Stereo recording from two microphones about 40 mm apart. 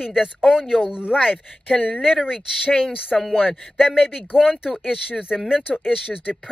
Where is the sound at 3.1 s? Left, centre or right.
Centre.